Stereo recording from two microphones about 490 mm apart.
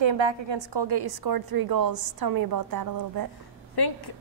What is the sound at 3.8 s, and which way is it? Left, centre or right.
Speech, left.